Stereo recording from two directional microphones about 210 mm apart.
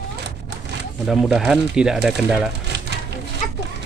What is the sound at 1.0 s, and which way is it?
Speech, 5° right (ahead or behind).